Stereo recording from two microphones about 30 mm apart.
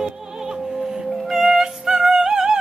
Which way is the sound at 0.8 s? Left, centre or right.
Centre.